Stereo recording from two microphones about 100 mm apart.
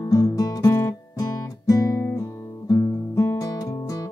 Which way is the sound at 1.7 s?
35° left (ahead or behind).